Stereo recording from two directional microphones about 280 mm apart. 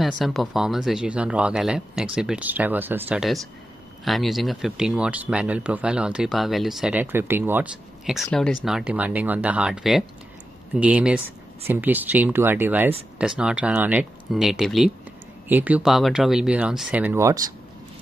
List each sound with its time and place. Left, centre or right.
0.0 s speech: centre